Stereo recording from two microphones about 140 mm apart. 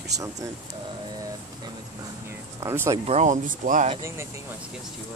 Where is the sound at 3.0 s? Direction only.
55° right (ahead or behind).